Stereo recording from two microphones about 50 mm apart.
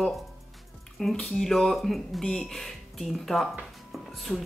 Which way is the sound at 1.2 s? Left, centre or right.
Centre.